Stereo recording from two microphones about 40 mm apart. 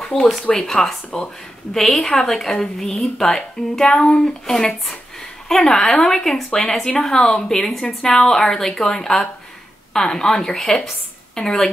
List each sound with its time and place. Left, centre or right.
0.0 s a sound: centre
0.5 s a woman's voice: centre
5.5 s a woman's voice: centre